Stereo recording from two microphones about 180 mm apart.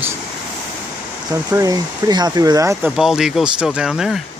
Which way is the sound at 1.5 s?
20° right (ahead or behind).